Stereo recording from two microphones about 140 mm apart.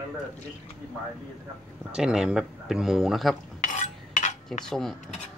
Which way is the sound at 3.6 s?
60° left (ahead or behind).